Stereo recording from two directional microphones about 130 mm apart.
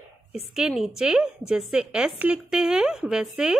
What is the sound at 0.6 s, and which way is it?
A woman's voice, 5° right (ahead or behind).